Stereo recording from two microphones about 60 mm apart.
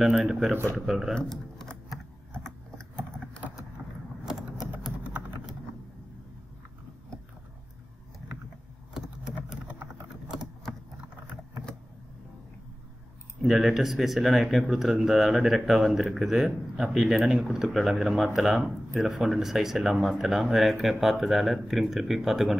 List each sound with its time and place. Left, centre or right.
0.0 s speech: centre
1.1 s typing: centre
3.8 s vehicle: centre
4.3 s typing: centre
9.5 s typing: centre
13.4 s speech: centre